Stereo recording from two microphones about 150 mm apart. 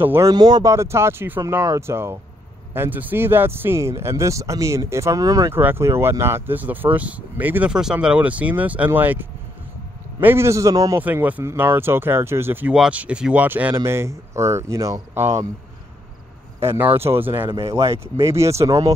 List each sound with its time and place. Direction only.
0.0 s speech: 15° right (ahead or behind)
0.3 s speech: 25° right (ahead or behind)
16.6 s speech: 15° right (ahead or behind)
17.5 s speech: 35° right (ahead or behind)
18.2 s speech: 20° right (ahead or behind)